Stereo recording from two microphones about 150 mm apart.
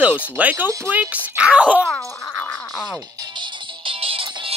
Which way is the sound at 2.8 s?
25° right (ahead or behind).